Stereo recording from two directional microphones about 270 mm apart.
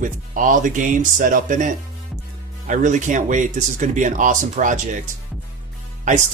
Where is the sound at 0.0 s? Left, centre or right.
Right.